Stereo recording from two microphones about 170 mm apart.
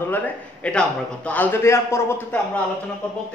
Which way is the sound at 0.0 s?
10° left (ahead or behind).